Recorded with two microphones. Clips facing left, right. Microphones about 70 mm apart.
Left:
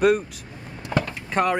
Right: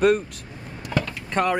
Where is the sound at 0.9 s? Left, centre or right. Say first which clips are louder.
Left 1 dB; left.